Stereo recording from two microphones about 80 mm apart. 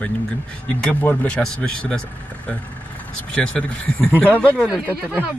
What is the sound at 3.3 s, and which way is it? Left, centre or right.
Speech, centre.